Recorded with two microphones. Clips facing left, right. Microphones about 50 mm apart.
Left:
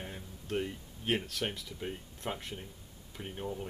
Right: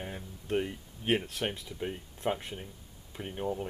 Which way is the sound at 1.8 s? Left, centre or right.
Centre.